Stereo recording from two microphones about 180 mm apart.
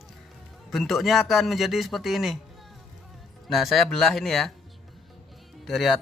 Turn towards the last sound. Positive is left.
turn(degrees=0)  # may be behind; listen again after turning